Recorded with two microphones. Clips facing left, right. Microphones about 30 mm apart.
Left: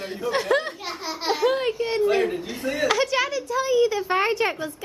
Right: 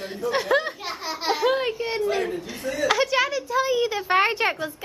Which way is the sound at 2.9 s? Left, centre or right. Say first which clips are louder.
Right 2 dB; centre.